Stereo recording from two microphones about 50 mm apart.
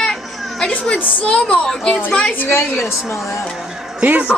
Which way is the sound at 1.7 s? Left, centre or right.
Centre.